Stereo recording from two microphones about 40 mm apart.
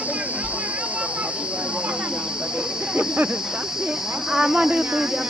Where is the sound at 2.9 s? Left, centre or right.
Right.